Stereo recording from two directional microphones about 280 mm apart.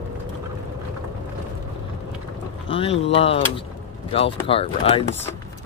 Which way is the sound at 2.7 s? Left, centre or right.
Left.